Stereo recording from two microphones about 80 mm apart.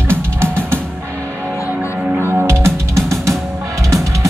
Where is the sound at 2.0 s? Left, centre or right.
Right.